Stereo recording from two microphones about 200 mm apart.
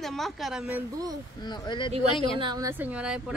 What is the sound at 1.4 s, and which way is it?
Speech, 20° left (ahead or behind).